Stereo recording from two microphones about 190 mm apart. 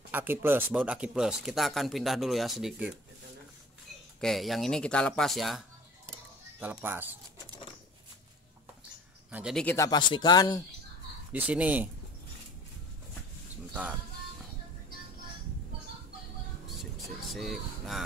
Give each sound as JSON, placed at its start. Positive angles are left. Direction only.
{"t": 0.1, "sound": "speech", "side_deg": -10}
{"t": 4.2, "sound": "speech", "side_deg": 0}
{"t": 6.6, "sound": "speech", "side_deg": -10}
{"t": 9.3, "sound": "speech", "side_deg": 0}
{"t": 9.8, "sound": "speech", "side_deg": 20}
{"t": 11.3, "sound": "speech", "side_deg": -5}
{"t": 16.6, "sound": "music", "side_deg": 0}